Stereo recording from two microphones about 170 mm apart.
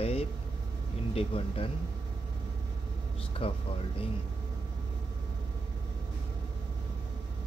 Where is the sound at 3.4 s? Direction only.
35° left (ahead or behind).